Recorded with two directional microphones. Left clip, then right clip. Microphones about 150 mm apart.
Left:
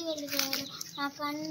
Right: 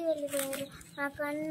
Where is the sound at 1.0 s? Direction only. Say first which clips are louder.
Even; 5° right (ahead or behind).